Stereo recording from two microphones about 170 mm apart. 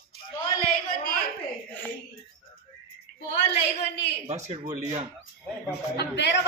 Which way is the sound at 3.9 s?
80° left.